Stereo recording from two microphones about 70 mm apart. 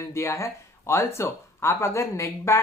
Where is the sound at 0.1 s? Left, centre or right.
Left.